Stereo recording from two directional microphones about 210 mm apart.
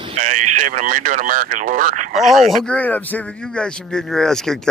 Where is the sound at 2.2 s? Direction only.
Centre (ahead or behind).